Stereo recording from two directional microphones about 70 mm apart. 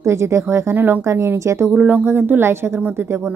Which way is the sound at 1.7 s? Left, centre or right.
Right.